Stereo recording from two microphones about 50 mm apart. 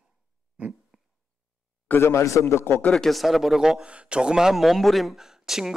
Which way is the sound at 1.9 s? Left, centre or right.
Left.